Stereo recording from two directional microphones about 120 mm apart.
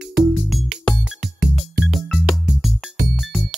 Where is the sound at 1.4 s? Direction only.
10° right (ahead or behind).